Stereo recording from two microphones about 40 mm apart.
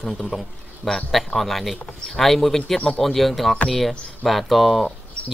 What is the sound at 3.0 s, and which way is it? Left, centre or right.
Speech, centre.